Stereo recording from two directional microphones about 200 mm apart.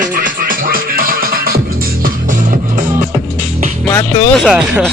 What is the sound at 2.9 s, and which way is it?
Music, 10° right (ahead or behind).